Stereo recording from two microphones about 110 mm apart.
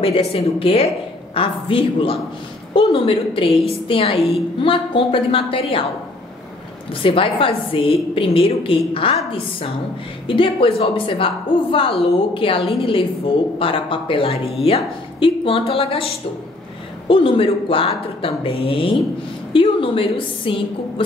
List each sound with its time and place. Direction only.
0.0 s a woman's voice: 60° left (ahead or behind)
1.3 s a woman's voice: 55° left (ahead or behind)
6.9 s a woman's voice: 55° left (ahead or behind)
17.1 s a woman's voice: 55° left (ahead or behind)